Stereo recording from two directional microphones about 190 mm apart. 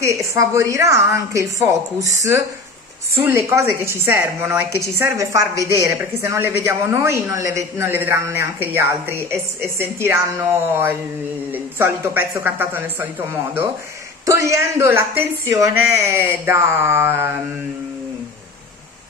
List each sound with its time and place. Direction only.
0.0 s a woman's voice: 15° right (ahead or behind)